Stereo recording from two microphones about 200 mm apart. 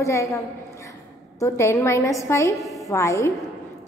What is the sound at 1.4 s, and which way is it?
A woman's voice, 15° left (ahead or behind).